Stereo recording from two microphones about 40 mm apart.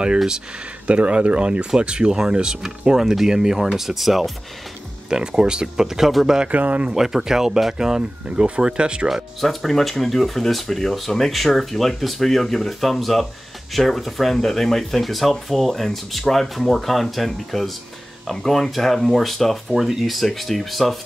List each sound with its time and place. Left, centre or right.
0.8 s speech: right; by 4.3 s centre
5.1 s speech: centre
6.5 s speech: right
6.9 s speech: centre
8.3 s speech: right
9.4 s speech: centre